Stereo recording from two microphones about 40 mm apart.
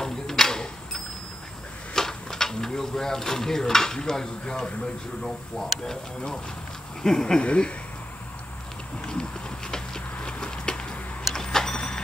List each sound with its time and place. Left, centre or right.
0.0 s a sound: centre
2.0 s speech: centre
5.9 s speech: centre
7.4 s speech: left
9.0 s a sound: centre
11.3 s vehicle: centre